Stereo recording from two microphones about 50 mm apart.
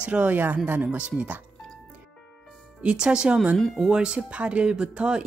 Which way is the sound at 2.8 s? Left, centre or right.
Centre.